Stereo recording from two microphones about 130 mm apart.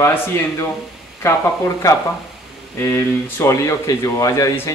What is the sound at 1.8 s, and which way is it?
Speech, 25° left (ahead or behind).